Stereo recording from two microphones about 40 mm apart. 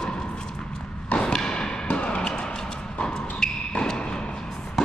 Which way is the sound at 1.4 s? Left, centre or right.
Centre.